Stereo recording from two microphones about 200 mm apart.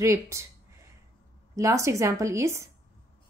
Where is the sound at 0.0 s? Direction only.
15° right (ahead or behind).